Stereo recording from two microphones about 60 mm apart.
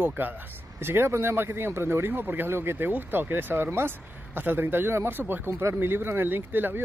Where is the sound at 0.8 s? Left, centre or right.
Right.